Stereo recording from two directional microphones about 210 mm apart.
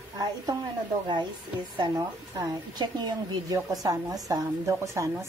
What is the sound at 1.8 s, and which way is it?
A woman's voice, 15° right (ahead or behind).